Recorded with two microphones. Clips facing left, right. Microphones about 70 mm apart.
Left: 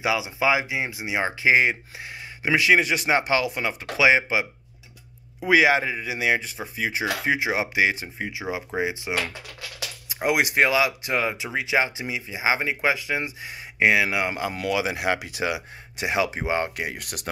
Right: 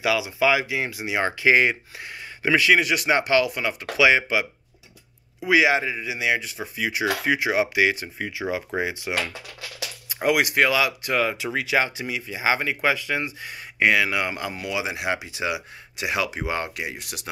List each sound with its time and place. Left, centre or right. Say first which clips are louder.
0.0 s speech: right 2 dB; left
2.7 s speech: left 2 dB; left
5.4 s speech: left 1 dB; left
14.7 s speech: left 2 dB; left